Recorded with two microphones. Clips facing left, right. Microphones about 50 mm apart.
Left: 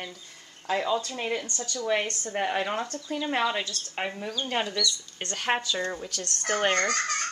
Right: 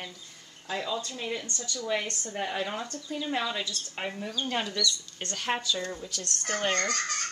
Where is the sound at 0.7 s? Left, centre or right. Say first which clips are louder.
Left 6 dB; left.